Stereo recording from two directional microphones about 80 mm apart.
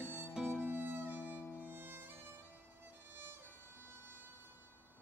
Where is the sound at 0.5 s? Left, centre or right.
Right.